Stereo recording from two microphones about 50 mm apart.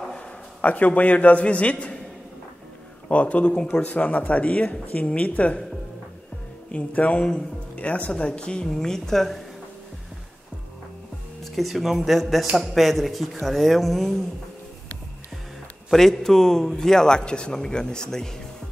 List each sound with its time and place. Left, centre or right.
0.6 s speech: left
3.1 s speech: left
6.7 s a man's voice: left; by 9.4 s centre
11.4 s speech: centre
15.9 s a man's voice: centre